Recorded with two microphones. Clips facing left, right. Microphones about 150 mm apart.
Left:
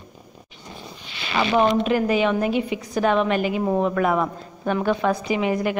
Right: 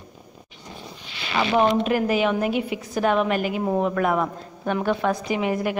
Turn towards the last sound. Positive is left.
turn(degrees=0)  # may be behind; listen again after turning